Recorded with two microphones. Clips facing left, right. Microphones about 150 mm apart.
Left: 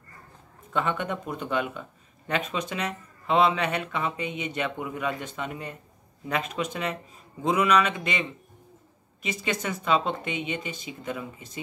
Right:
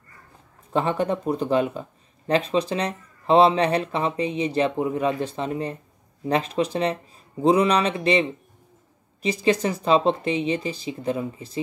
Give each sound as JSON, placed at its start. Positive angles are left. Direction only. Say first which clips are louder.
{"t": 0.7, "sound": "speech", "louder": "right 5 dB", "side_deg": -35}